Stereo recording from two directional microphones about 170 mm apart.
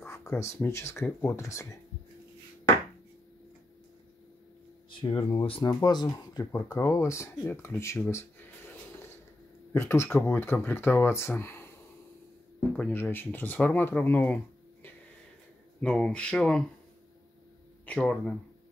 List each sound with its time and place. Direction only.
0.4 s speech: 15° left (ahead or behind)
4.9 s speech: 30° left (ahead or behind); by 16.6 s 5° left (ahead or behind)
17.8 s speech: 5° left (ahead or behind)